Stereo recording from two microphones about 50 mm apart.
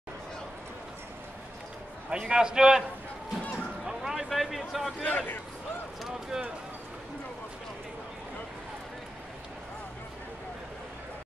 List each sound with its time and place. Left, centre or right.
2.0 s a man's voice: centre
3.5 s a sound: centre
5.0 s speech: left
6.3 s a man's voice: centre